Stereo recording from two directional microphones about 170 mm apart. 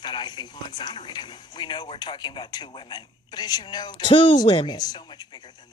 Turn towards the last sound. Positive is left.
turn(degrees=25)  # may be behind; listen again after turning